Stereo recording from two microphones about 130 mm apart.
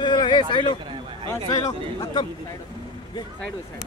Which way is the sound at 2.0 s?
35° left (ahead or behind).